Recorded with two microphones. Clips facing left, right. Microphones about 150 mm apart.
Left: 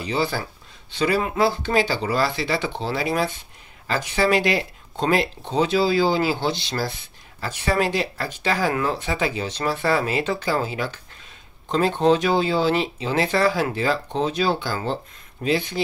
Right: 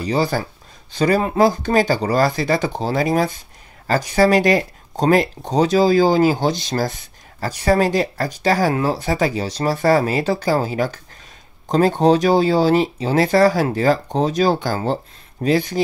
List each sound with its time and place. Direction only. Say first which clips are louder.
0.0 s speech: right 5 dB; 40° right (ahead or behind)